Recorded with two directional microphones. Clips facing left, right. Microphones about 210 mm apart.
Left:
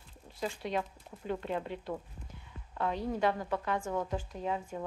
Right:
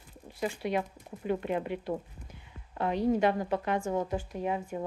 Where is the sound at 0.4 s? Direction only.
10° right (ahead or behind).